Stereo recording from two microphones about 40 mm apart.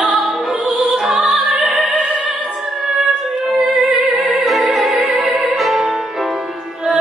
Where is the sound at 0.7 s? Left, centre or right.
Centre.